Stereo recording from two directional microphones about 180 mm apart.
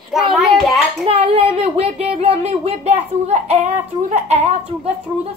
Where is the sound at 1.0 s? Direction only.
35° right (ahead or behind).